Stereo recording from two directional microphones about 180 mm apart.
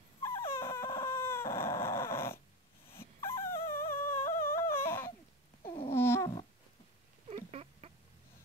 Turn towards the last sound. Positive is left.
turn(degrees=-35)  # may be behind; listen again after turning